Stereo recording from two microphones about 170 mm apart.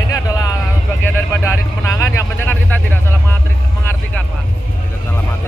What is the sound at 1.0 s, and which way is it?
Vehicle, 15° left (ahead or behind).